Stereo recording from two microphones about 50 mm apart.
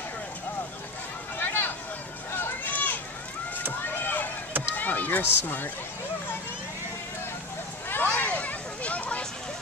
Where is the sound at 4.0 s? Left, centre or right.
Left.